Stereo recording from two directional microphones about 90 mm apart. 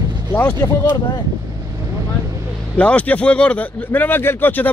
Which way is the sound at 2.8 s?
15° left (ahead or behind).